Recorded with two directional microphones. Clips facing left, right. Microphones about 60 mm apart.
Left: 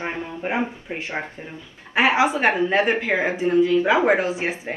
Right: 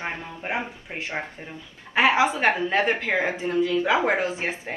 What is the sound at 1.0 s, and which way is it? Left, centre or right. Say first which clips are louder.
A woman's voice: even; left.